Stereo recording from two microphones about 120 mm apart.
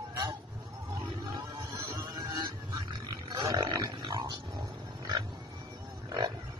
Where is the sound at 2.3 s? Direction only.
30° right (ahead or behind).